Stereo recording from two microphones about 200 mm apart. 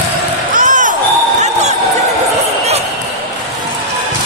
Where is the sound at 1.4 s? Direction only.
35° right (ahead or behind).